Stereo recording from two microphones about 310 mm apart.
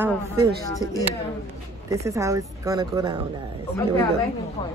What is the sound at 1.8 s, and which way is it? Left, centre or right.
A woman's voice, centre.